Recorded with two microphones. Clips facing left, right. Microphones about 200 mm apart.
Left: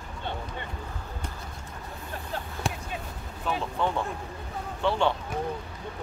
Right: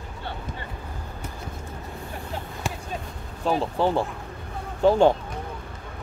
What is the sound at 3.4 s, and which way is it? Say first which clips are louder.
Speech: right 6 dB; 35° right (ahead or behind).